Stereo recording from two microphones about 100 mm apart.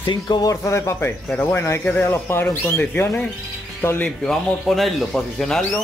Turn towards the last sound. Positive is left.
turn(degrees=5)  # may be behind; listen again after turning